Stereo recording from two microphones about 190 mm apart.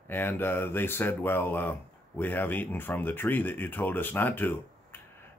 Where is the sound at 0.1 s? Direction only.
10° left (ahead or behind).